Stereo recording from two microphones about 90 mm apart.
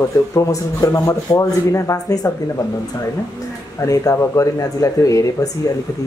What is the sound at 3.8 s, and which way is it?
Speech, 40° left (ahead or behind).